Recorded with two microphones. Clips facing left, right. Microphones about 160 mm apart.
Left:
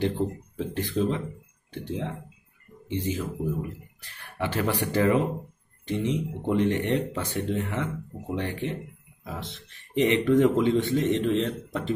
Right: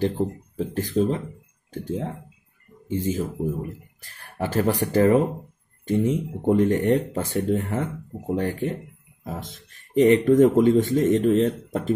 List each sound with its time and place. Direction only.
0.6 s speech: 40° right (ahead or behind)